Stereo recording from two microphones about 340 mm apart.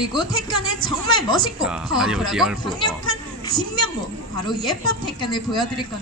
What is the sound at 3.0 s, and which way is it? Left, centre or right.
Speech, right.